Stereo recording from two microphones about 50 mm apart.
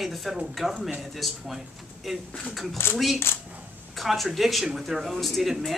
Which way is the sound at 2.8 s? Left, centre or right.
Left.